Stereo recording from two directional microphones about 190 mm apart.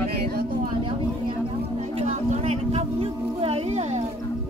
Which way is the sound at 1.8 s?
35° right (ahead or behind).